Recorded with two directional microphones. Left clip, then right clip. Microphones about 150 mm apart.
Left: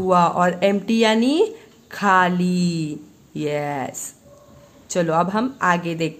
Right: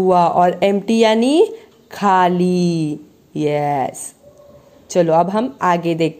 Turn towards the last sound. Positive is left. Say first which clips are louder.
# right 4 dB
turn(degrees=-25)  # may be behind; listen again after turning